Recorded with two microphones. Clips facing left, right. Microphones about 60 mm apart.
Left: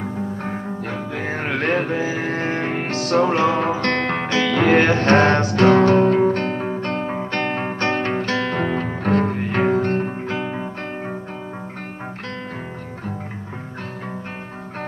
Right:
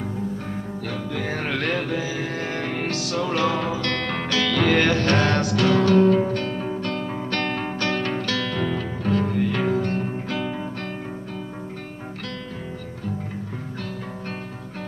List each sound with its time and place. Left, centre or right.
0.8 s music: left
3.0 s music: left
10.3 s music: left